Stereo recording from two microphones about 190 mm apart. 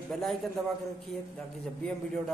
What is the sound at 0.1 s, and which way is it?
Speech, centre (ahead or behind).